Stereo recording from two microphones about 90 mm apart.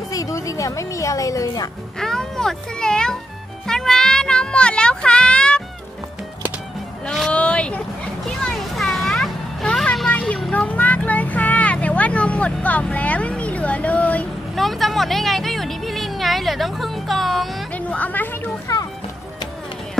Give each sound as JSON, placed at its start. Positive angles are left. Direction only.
{"t": 0.1, "sound": "a woman's voice", "side_deg": 40}
{"t": 2.0, "sound": "a child's voice", "side_deg": 5}
{"t": 7.2, "sound": "vehicle", "side_deg": 10}
{"t": 8.3, "sound": "music", "side_deg": 0}
{"t": 9.9, "sound": "a sound", "side_deg": 0}
{"t": 10.5, "sound": "speech", "side_deg": 15}
{"t": 14.5, "sound": "a sound", "side_deg": 0}
{"t": 17.7, "sound": "a woman's voice", "side_deg": 15}
{"t": 18.7, "sound": "music", "side_deg": 45}